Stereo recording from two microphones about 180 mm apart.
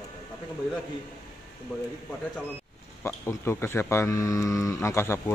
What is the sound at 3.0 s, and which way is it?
Speech, 15° left (ahead or behind).